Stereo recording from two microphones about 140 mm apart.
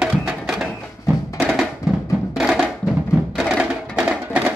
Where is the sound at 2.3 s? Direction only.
5° right (ahead or behind).